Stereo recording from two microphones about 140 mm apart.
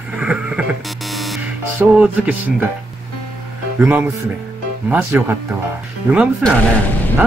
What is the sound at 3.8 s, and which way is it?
Speech, 10° right (ahead or behind).